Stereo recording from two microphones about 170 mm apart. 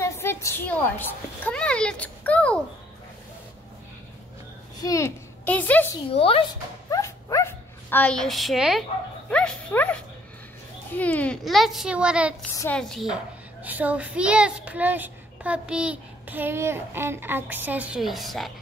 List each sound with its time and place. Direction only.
0.0 s a child's voice: 15° left (ahead or behind)
4.8 s a child's voice: 15° left (ahead or behind)
6.1 s speech: 35° left (ahead or behind)
6.9 s dog: 20° left (ahead or behind); by 8.8 s centre (ahead or behind)
9.3 s a child's voice: 5° left (ahead or behind)
13.6 s a child's voice: 10° right (ahead or behind)